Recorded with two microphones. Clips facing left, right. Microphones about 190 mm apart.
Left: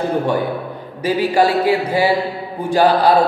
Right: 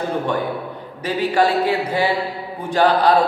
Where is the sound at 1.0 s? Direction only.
10° left (ahead or behind).